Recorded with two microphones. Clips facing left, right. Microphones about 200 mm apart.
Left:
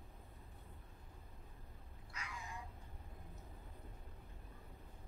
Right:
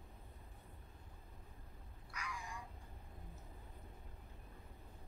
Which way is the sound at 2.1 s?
25° left (ahead or behind).